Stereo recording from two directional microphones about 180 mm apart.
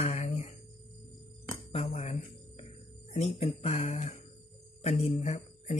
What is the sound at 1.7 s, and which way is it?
Speech, 35° left (ahead or behind).